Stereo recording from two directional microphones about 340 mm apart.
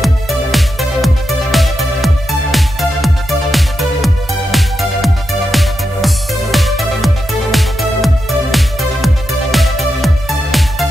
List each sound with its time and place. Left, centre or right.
0.0 s music: centre